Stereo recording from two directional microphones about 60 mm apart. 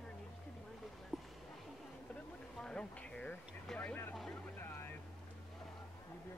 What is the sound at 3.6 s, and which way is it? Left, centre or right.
Speech, centre.